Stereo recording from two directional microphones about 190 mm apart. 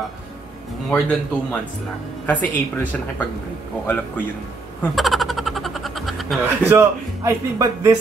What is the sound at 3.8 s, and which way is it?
Speech, 10° left (ahead or behind).